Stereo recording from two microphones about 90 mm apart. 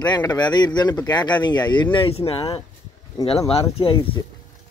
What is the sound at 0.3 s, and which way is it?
Speech, 55° left (ahead or behind).